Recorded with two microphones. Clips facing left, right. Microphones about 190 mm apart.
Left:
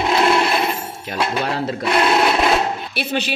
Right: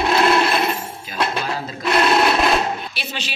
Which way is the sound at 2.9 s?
55° left (ahead or behind).